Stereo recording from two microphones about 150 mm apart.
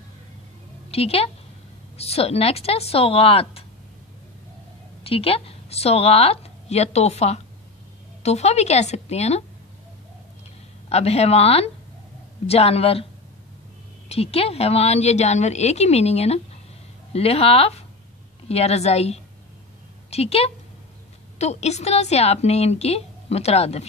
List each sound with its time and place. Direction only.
0.9 s speech: 40° left (ahead or behind)
5.0 s a woman's voice: 40° left (ahead or behind)
10.9 s a woman's voice: 45° left (ahead or behind)
14.0 s a woman's voice: 40° left (ahead or behind)